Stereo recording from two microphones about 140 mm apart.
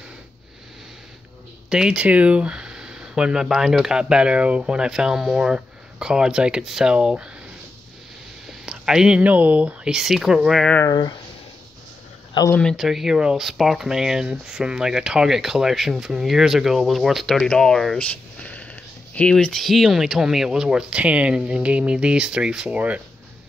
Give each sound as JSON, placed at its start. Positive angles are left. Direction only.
{"t": 1.7, "sound": "speech", "side_deg": -5}
{"t": 8.5, "sound": "speech", "side_deg": -5}
{"t": 10.9, "sound": "speech", "side_deg": 30}
{"t": 12.5, "sound": "speech", "side_deg": 0}